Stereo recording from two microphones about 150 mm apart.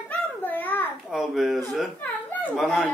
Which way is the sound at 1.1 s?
Centre (ahead or behind).